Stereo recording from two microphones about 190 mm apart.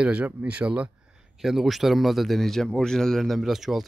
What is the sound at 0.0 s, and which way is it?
A man's voice, 5° right (ahead or behind).